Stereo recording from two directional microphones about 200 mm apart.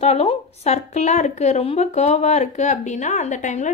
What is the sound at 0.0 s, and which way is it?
A woman's voice, 30° left (ahead or behind).